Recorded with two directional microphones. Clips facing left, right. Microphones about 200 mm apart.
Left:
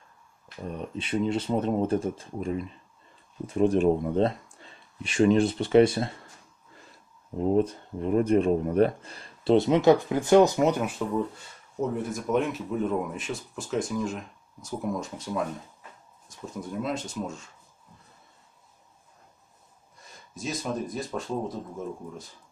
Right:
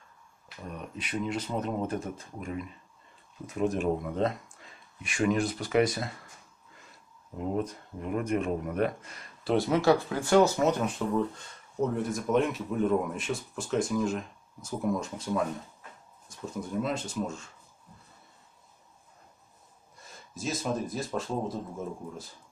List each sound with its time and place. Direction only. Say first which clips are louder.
0.7 s speech: left 6 dB; 30° left (ahead or behind)
7.3 s speech: left 8 dB; 30° left (ahead or behind); by 10.9 s 15° left (ahead or behind)
12.1 s speech: even; centre (ahead or behind)
20.1 s speech: even; centre (ahead or behind)